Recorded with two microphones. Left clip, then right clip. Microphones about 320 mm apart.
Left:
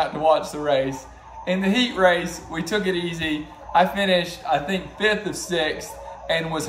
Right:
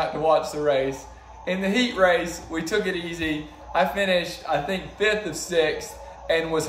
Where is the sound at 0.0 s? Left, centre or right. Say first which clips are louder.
Left 2 dB; centre.